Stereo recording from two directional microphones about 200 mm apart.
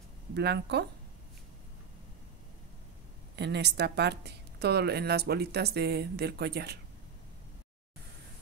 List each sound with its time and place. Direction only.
0.3 s speech: 55° right (ahead or behind)
3.3 s speech: 60° right (ahead or behind)